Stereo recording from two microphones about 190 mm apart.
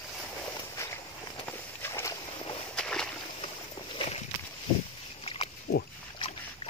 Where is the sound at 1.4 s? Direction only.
10° left (ahead or behind).